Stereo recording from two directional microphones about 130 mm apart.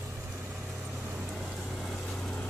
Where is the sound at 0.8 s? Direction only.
15° right (ahead or behind).